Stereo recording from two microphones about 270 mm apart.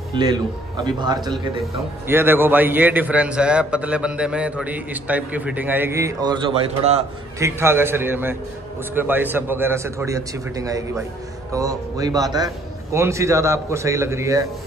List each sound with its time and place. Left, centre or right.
0.1 s a man's voice: centre
7.3 s a man's voice: centre